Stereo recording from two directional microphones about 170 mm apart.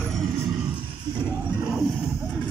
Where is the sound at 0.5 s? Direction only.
5° right (ahead or behind).